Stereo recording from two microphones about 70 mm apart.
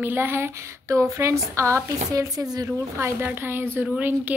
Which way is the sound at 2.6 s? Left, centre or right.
Right.